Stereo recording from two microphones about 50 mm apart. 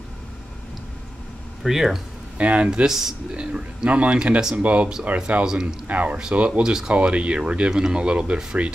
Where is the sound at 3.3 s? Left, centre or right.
Right.